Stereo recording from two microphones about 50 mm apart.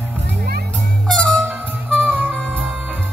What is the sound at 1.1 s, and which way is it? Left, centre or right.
Music, centre.